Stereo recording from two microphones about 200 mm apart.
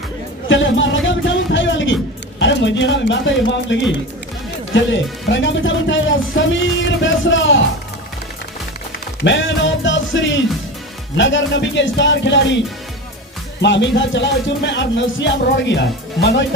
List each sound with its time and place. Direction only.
0.5 s music: 70° left (ahead or behind)
4.7 s speech: 65° left (ahead or behind)
9.2 s speech: 65° left (ahead or behind)